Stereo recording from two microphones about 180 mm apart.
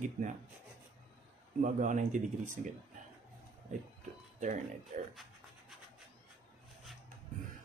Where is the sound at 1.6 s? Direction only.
45° right (ahead or behind).